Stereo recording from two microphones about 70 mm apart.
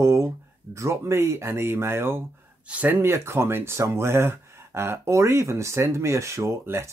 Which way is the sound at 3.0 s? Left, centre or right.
Right.